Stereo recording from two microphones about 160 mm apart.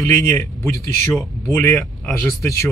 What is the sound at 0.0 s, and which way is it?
Speech, 20° left (ahead or behind).